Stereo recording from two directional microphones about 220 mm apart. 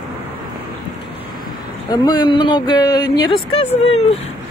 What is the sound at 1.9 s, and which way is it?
Speech, 20° left (ahead or behind).